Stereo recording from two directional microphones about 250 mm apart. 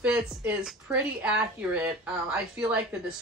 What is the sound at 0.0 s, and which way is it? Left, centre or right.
A woman's voice, centre.